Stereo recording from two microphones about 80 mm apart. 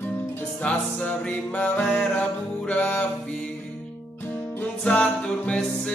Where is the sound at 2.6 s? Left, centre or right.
Centre.